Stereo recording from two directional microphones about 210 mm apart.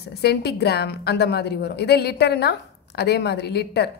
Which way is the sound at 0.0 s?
50° left (ahead or behind).